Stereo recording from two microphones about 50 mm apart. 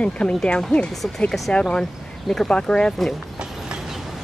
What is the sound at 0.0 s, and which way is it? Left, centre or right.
Speech, left.